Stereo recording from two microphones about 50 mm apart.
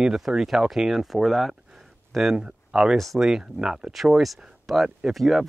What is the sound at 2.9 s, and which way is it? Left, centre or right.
Speech, centre.